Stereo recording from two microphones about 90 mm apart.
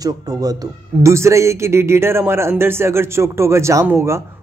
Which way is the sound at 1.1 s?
30° right (ahead or behind).